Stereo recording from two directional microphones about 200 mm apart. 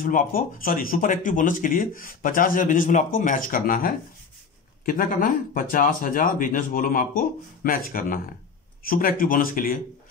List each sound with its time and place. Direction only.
0.0 s speech: 45° left (ahead or behind)